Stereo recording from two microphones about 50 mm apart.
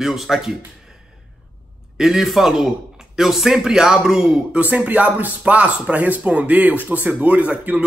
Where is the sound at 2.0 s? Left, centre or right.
Centre.